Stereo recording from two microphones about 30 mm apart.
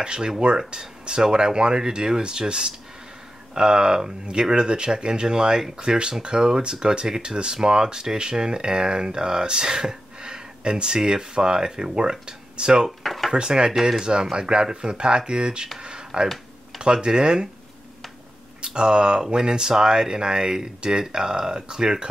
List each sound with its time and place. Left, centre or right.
0.0 s speech: right
13.0 s a sound: centre
13.3 s speech: right
15.8 s a sound: right
16.8 s speech: right
18.8 s speech: right